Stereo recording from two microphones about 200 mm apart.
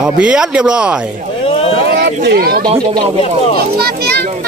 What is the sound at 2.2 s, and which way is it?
Speech, 50° right (ahead or behind).